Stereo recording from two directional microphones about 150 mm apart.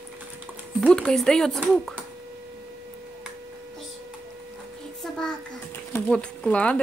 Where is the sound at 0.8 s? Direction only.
5° left (ahead or behind).